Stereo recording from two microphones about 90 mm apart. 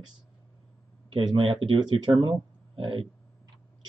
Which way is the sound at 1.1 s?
70° right (ahead or behind).